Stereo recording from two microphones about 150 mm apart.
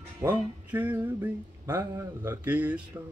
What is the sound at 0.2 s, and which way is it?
Music, 15° right (ahead or behind).